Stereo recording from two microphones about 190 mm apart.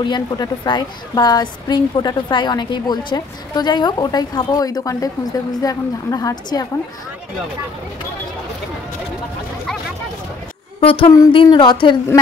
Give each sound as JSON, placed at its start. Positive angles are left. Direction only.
{"t": 0.0, "sound": "a woman's voice", "side_deg": 25}
{"t": 10.8, "sound": "a sound", "side_deg": 30}
{"t": 11.3, "sound": "a woman's voice", "side_deg": 20}